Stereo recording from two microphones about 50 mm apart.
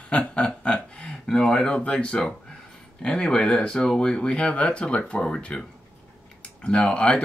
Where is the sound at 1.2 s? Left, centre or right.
Centre.